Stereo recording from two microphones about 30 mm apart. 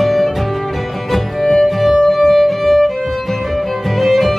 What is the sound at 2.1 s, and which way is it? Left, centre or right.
Music, centre.